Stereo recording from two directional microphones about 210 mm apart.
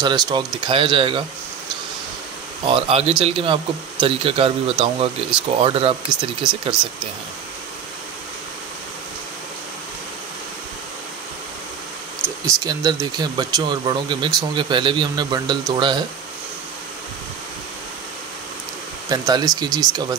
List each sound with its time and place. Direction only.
0.0 s speech: 20° right (ahead or behind)
2.6 s speech: 25° right (ahead or behind)
13.0 s speech: 20° right (ahead or behind)
19.0 s speech: 20° right (ahead or behind)